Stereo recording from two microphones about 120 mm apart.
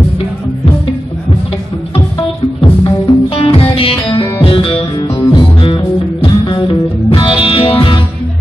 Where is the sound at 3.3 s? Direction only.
50° left (ahead or behind).